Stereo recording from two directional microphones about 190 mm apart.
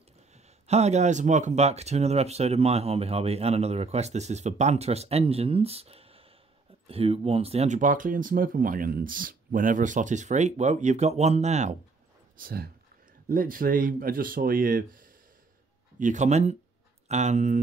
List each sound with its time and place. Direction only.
0.3 s speech: 35° right (ahead or behind)
12.4 s speech: 50° right (ahead or behind)